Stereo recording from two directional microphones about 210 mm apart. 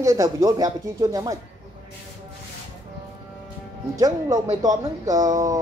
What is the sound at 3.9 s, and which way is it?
Speech, 15° right (ahead or behind).